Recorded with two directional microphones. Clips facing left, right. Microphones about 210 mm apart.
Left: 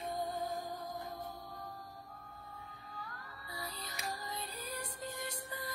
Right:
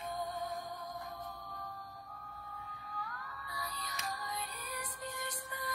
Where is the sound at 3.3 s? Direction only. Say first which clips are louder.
Right 1 dB; 25° left (ahead or behind).